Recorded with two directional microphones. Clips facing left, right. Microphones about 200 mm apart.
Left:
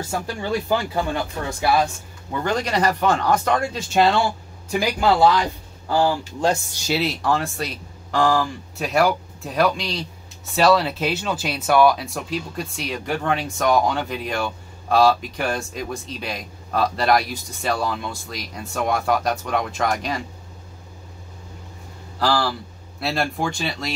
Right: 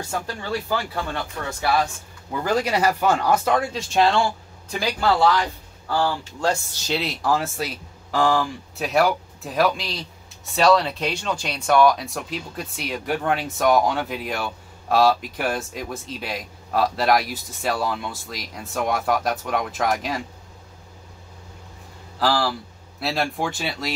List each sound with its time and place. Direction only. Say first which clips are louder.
0.1 s speech: left 3 dB; 15° left (ahead or behind)
2.3 s speech: right 1 dB; 5° right (ahead or behind); by 6.8 s 15° left (ahead or behind)
6.9 s speech: left 2 dB; centre (ahead or behind)
22.2 s speech: even; centre (ahead or behind)